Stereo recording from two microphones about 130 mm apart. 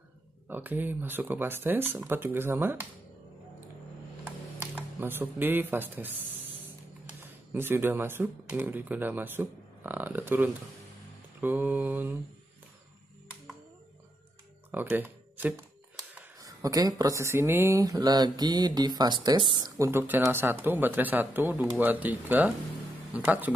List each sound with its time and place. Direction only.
0.5 s speech: 15° right (ahead or behind)
4.7 s speech: 15° right (ahead or behind)
14.7 s a sound: 15° right (ahead or behind)
16.3 s speech: 30° right (ahead or behind)
19.9 s speech: 15° right (ahead or behind)